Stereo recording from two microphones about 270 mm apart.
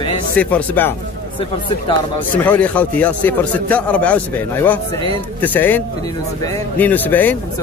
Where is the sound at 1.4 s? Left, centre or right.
Centre.